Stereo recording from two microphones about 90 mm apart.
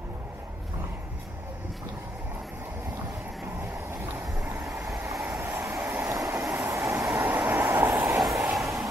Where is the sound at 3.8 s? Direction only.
25° right (ahead or behind).